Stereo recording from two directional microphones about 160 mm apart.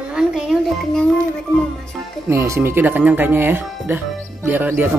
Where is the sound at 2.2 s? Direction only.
20° right (ahead or behind).